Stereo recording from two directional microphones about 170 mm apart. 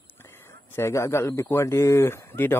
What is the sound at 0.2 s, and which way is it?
A man's voice, 15° left (ahead or behind).